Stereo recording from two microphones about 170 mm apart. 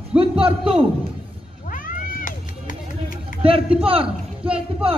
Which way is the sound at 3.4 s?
35° right (ahead or behind).